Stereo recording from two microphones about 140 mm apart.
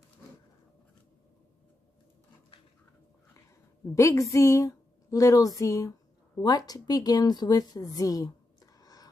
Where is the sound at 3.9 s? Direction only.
20° left (ahead or behind).